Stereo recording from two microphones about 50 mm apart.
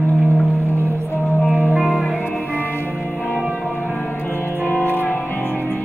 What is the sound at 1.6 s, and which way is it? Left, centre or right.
Music, right.